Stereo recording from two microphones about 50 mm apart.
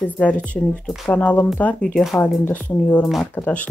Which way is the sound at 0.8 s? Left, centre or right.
Centre.